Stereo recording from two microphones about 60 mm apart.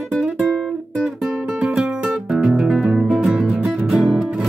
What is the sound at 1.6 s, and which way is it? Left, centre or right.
Music, centre.